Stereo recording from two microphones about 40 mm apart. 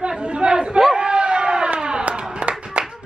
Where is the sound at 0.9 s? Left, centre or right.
Right.